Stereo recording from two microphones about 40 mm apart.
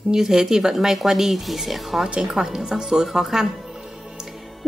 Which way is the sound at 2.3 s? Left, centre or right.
Centre.